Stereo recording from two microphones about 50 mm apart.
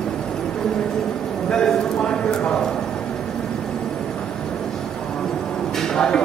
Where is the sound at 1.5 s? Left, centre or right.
Centre.